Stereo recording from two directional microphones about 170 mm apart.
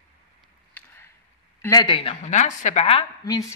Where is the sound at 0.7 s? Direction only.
15° left (ahead or behind).